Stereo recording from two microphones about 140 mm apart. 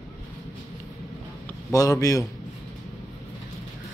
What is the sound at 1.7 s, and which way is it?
Speech, 25° left (ahead or behind).